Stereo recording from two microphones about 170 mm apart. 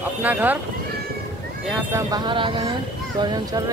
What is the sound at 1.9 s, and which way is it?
Speech, 25° right (ahead or behind).